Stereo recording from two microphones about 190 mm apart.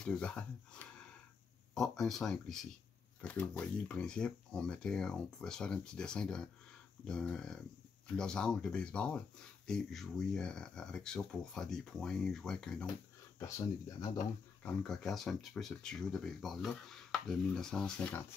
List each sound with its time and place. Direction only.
0.0 s speech: 5° left (ahead or behind)
13.4 s speech: 15° left (ahead or behind)
14.6 s speech: 5° left (ahead or behind)